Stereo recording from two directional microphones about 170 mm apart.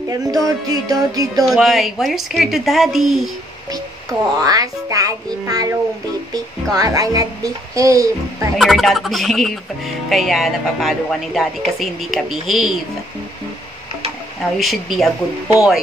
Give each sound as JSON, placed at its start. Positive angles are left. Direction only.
{"t": 0.1, "sound": "a child's voice", "side_deg": -20}
{"t": 1.4, "sound": "speech", "side_deg": 0}
{"t": 4.4, "sound": "a child's voice", "side_deg": -20}
{"t": 8.5, "sound": "speech", "side_deg": 0}
{"t": 14.6, "sound": "speech", "side_deg": 0}